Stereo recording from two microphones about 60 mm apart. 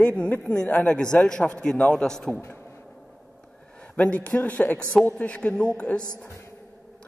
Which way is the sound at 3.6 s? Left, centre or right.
Left.